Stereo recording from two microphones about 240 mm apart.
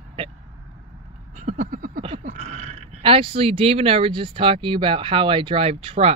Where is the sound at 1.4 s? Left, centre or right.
Right.